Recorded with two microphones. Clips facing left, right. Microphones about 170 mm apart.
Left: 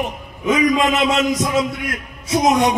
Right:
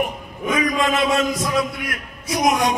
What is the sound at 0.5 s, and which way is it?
A man's voice, 20° left (ahead or behind).